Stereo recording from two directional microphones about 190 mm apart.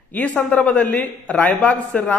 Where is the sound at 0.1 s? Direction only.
5° left (ahead or behind).